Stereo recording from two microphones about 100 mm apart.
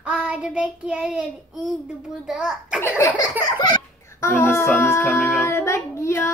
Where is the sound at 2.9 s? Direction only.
35° left (ahead or behind).